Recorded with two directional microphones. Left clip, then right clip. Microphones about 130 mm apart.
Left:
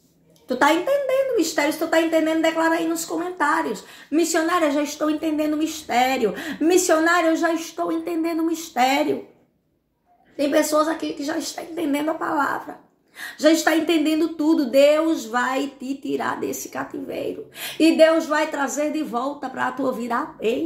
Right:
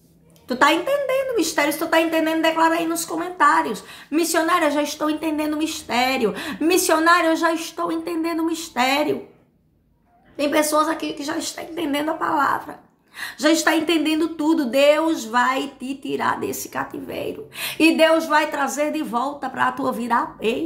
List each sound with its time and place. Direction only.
0.5 s a woman's voice: 20° right (ahead or behind)
10.3 s a woman's voice: 25° right (ahead or behind)